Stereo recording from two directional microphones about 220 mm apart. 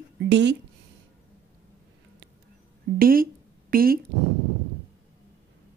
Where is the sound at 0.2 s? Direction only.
55° right (ahead or behind).